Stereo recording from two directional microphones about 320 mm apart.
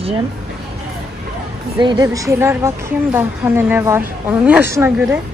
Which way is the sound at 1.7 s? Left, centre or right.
Centre.